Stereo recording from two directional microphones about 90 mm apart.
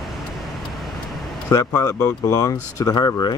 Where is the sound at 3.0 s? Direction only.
50° left (ahead or behind).